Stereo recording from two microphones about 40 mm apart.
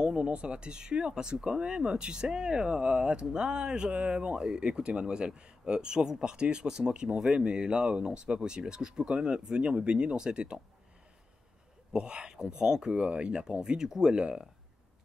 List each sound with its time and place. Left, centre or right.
0.0 s speech: right
11.9 s speech: right